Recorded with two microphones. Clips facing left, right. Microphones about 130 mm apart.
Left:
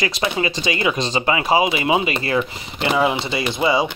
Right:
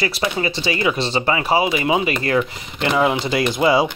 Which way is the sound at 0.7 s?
35° right (ahead or behind).